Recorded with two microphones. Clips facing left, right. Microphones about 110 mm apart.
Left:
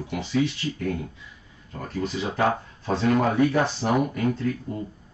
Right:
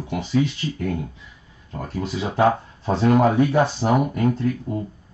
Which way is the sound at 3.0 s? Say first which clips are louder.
Right 5 dB; 30° right (ahead or behind).